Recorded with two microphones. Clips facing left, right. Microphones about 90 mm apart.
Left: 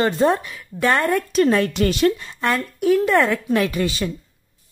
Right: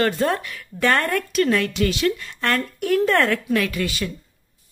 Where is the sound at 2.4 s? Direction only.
10° left (ahead or behind).